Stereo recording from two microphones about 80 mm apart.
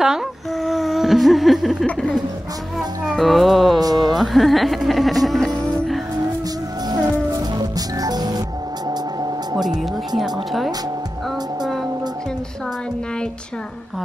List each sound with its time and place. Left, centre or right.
0.0 s speech: centre
1.9 s speech: centre
2.8 s music: centre
7.5 s music: right
9.5 s speech: right
9.8 s music: centre